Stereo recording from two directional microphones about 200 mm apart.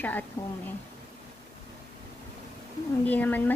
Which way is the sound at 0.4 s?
15° left (ahead or behind).